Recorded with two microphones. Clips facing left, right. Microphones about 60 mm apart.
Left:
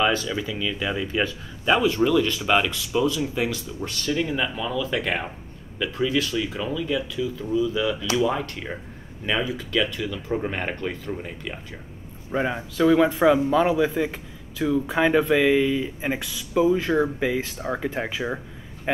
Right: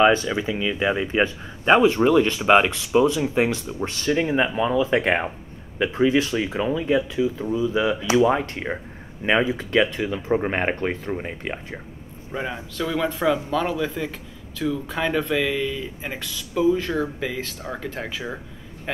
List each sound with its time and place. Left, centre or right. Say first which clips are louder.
0.0 s speech: right 5 dB; right
12.3 s speech: left 4 dB; centre